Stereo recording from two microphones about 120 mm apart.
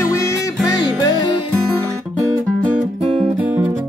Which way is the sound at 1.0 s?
40° left (ahead or behind).